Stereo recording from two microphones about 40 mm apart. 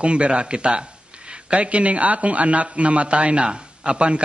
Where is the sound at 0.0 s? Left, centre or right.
Right.